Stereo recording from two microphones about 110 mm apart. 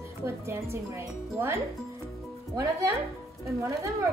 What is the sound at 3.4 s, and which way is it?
Speech, 30° right (ahead or behind).